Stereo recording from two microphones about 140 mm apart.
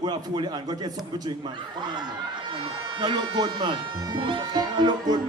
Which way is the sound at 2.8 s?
35° right (ahead or behind).